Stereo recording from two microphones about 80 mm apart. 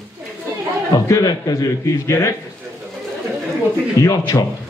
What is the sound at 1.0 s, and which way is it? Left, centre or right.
A man's voice, left.